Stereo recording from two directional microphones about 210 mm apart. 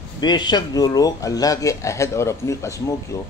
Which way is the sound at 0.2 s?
20° left (ahead or behind).